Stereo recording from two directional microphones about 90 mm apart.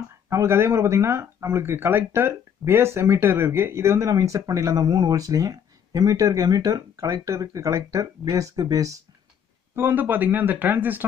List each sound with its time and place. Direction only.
0.3 s speech: 30° right (ahead or behind)
9.8 s speech: 25° right (ahead or behind)